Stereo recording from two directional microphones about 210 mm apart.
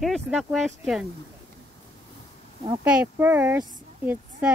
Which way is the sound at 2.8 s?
5° right (ahead or behind).